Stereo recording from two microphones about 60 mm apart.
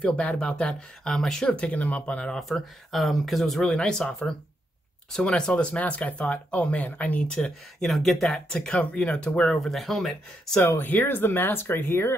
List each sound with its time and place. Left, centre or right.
0.0 s speech: centre
1.5 s speech: left
2.4 s speech: centre; by 7.2 s left
7.3 s speech: centre
9.6 s speech: centre
10.6 s speech: left